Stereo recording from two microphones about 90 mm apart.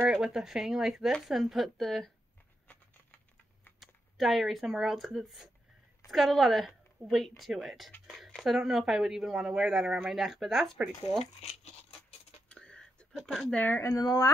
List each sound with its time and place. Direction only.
0.2 s speech: 5° right (ahead or behind)
3.8 s speech: centre (ahead or behind)
12.4 s a sound: 10° left (ahead or behind)
13.1 s speech: centre (ahead or behind)
13.6 s speech: 25° left (ahead or behind)
13.9 s speech: 45° left (ahead or behind)